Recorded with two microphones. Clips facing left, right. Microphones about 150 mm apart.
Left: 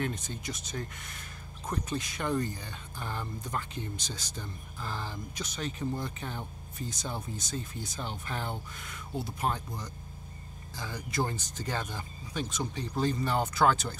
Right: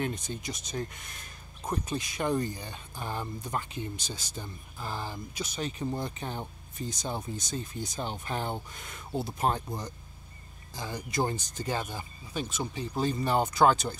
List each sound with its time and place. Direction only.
0.0 s speech: 15° right (ahead or behind)